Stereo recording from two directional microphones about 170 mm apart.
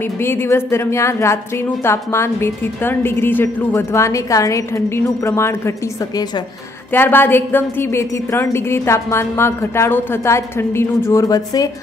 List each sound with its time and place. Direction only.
0.0 s a woman's voice: 15° left (ahead or behind)